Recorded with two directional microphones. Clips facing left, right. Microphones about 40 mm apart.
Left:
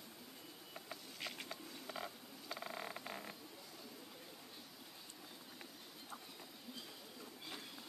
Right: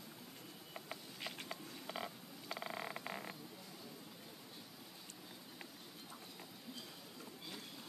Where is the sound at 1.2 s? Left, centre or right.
Centre.